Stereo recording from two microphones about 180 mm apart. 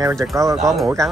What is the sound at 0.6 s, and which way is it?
Speech, centre (ahead or behind).